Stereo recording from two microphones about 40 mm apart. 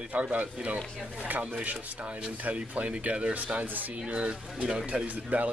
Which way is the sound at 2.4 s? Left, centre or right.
Right.